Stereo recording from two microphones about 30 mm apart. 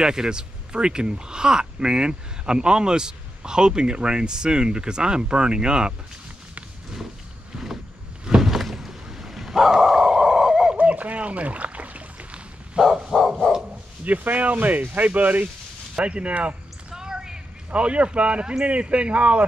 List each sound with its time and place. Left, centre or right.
0.0 s speech: right
7.5 s a sound: centre
10.8 s a sound: right
12.8 s bow-wow: right
13.1 s bow-wow: centre
14.0 s speech: right
16.1 s speech: right
16.9 s a sound: right
17.7 s speech: right